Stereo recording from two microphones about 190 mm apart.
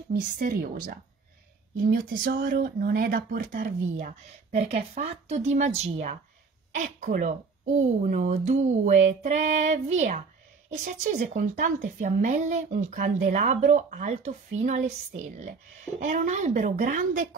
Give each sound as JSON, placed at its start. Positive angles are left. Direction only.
{"t": 0.1, "sound": "speech", "side_deg": -50}
{"t": 16.0, "sound": "speech", "side_deg": -40}